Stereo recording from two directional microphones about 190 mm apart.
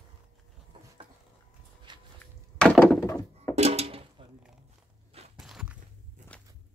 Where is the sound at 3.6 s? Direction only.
30° right (ahead or behind).